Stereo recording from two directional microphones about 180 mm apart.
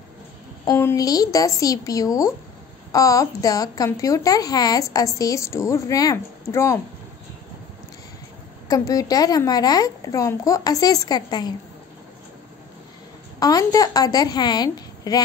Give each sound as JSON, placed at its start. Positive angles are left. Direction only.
{"t": 0.7, "sound": "speech", "side_deg": 15}
{"t": 8.6, "sound": "speech", "side_deg": 20}
{"t": 13.4, "sound": "speech", "side_deg": 20}